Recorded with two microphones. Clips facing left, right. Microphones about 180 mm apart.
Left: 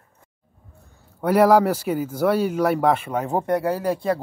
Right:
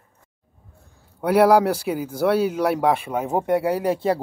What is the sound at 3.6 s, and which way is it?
Speech, 15° right (ahead or behind).